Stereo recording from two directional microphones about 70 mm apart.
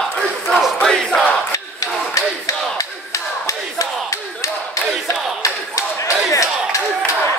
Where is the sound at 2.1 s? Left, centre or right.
Left.